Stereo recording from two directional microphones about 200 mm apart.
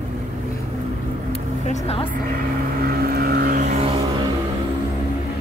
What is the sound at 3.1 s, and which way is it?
Vehicle, 50° right (ahead or behind).